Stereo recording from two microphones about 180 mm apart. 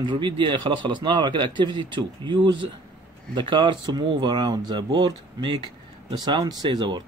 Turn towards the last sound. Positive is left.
turn(degrees=-25)  # may be behind; listen again after turning